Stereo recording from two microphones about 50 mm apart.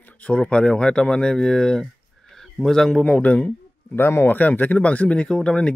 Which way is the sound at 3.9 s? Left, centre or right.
Left.